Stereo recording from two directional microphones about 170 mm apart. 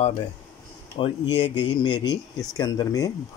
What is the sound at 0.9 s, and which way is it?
Speech, 30° left (ahead or behind).